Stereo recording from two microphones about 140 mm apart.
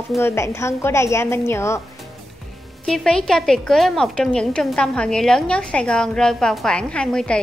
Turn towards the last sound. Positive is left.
turn(degrees=5)  # may be behind; listen again after turning